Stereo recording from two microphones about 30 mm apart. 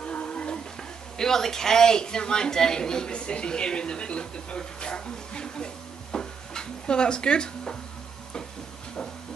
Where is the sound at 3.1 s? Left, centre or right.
Left.